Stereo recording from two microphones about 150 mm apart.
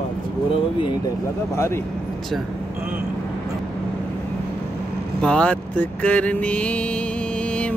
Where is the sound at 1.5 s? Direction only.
15° left (ahead or behind).